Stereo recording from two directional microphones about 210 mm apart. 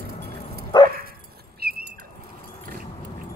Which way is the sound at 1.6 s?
50° right (ahead or behind).